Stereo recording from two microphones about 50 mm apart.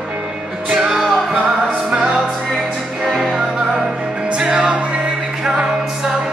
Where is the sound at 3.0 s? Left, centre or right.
Centre.